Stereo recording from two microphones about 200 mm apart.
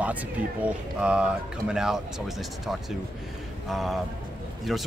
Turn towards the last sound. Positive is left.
turn(degrees=0)  # may be behind; listen again after turning